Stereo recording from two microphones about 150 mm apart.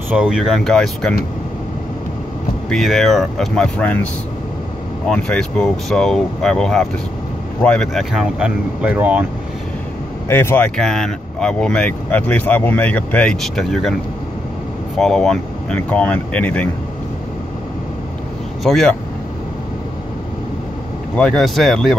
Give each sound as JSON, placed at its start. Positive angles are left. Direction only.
{"t": 0.1, "sound": "speech", "side_deg": -5}
{"t": 2.7, "sound": "speech", "side_deg": 0}
{"t": 10.2, "sound": "speech", "side_deg": 15}
{"t": 10.8, "sound": "speech", "side_deg": 5}
{"t": 15.0, "sound": "speech", "side_deg": 5}
{"t": 18.6, "sound": "speech", "side_deg": 0}
{"t": 21.2, "sound": "speech", "side_deg": 0}